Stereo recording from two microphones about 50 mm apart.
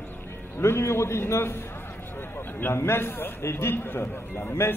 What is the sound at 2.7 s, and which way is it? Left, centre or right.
A man's voice, left.